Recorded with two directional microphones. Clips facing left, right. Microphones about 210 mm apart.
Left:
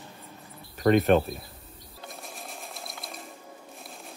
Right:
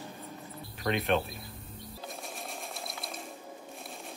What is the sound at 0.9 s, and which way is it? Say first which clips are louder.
Speech: left 9 dB; 45° left (ahead or behind).